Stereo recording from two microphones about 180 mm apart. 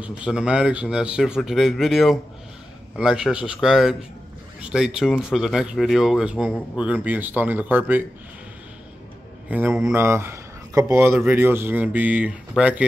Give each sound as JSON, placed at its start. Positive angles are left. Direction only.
{"t": 0.0, "sound": "a man's voice", "side_deg": -5}
{"t": 9.5, "sound": "speech", "side_deg": -10}